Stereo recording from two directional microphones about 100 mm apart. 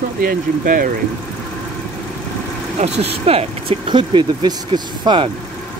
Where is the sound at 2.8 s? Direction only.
90° right; by 3.9 s 70° right (ahead or behind).